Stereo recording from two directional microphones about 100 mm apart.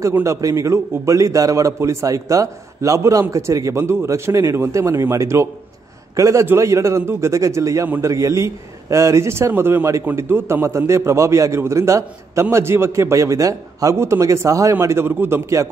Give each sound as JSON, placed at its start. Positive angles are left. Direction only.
{"t": 0.2, "sound": "a man's voice", "side_deg": -35}